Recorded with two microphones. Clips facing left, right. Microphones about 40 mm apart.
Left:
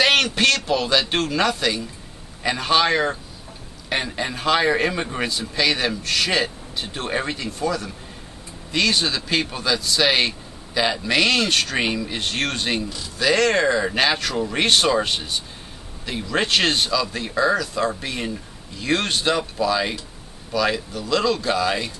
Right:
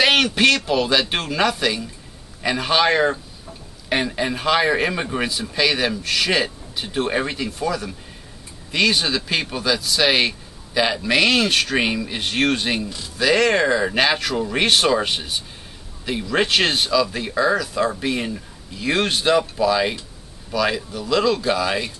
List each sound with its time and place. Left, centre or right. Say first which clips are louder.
0.0 s speech: right 2 dB; centre